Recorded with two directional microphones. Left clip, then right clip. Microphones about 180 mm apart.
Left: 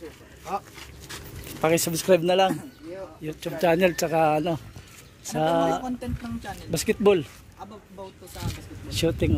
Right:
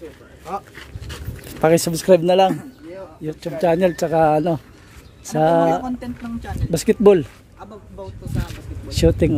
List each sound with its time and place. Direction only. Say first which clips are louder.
1.6 s speech: right 7 dB; 35° right (ahead or behind)
5.9 s speech: right 4 dB; centre (ahead or behind)
6.7 s speech: right 7 dB; 45° right (ahead or behind)
8.0 s speech: right 6 dB; centre (ahead or behind)
8.8 s speech: right 8 dB; 45° right (ahead or behind)